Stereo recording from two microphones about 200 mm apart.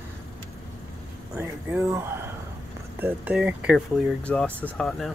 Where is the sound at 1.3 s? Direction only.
15° right (ahead or behind).